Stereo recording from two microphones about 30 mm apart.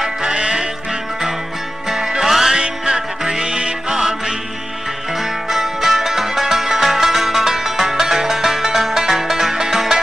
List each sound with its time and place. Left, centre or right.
0.2 s music: right
1.9 s music: centre
2.5 s music: right
5.5 s music: centre